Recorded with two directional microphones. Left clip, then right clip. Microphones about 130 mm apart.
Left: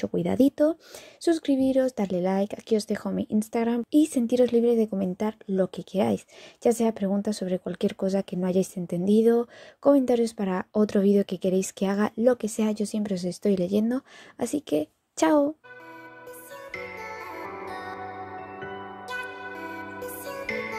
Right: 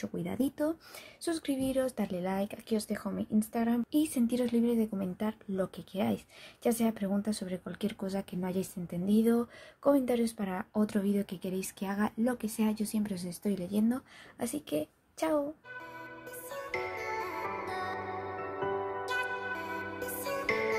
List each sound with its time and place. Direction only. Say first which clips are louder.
0.0 s speech: left 11 dB; 70° left (ahead or behind)
1.2 s speech: left 10 dB; 45° left (ahead or behind); by 12.1 s 70° left (ahead or behind)
12.2 s speech: left 10 dB; 55° left (ahead or behind); by 15.4 s 90° left
16.5 s music: right 1 dB; centre (ahead or behind)
19.0 s music: right 1 dB; centre (ahead or behind)